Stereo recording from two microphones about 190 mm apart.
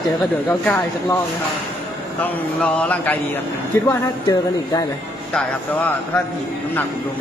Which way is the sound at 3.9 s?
20° left (ahead or behind).